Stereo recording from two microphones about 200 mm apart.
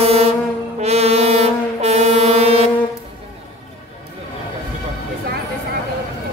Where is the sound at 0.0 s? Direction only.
30° right (ahead or behind).